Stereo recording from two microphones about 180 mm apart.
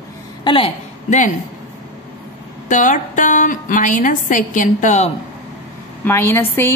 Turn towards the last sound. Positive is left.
turn(degrees=15)  # may be behind; listen again after turning